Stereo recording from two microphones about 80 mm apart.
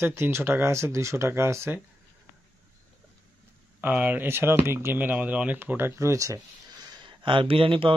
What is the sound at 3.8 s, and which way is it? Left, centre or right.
Speech, right.